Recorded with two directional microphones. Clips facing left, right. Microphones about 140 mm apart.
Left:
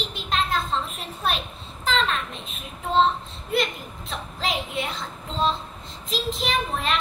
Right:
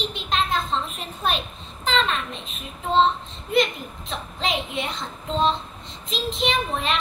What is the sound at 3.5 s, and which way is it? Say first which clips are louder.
A child's voice: right 4 dB; 5° left (ahead or behind).